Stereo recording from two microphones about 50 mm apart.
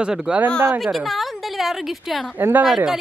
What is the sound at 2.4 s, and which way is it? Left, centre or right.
Speech, right.